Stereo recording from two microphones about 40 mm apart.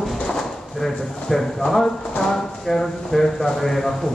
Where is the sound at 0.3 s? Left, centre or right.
Centre.